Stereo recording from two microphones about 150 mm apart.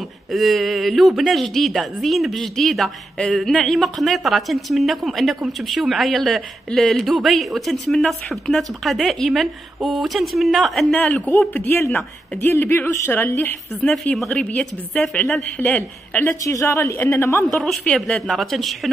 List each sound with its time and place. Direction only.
0.3 s a woman's voice: centre (ahead or behind)
11.2 s speech: 15° left (ahead or behind)
16.4 s a woman's voice: 20° left (ahead or behind)
17.5 s a woman's voice: centre (ahead or behind)